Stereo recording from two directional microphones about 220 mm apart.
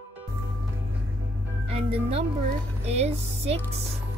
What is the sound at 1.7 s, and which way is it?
Speech, 25° right (ahead or behind).